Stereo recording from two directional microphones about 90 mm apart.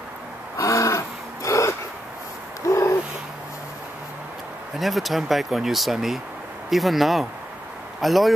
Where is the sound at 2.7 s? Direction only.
35° left (ahead or behind).